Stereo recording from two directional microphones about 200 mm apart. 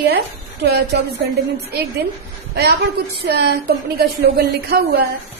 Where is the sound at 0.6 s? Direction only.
55° right (ahead or behind).